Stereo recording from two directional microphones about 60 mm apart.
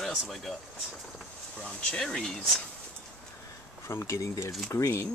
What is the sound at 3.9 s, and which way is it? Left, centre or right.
Speech, left.